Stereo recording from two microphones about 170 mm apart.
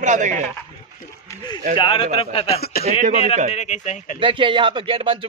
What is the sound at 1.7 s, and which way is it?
A man's voice, 30° left (ahead or behind).